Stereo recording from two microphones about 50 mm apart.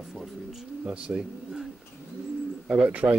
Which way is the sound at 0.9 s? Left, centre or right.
Right.